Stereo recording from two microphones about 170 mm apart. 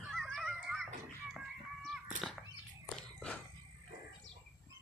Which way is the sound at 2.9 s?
Centre (ahead or behind).